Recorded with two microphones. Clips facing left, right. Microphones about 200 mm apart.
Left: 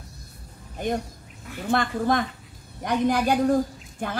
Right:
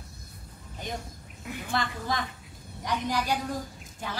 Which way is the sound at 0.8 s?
55° left (ahead or behind).